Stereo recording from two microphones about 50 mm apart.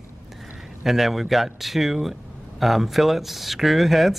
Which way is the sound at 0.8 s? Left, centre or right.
Centre.